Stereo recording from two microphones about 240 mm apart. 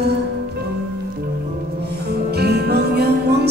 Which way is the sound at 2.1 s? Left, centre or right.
Right.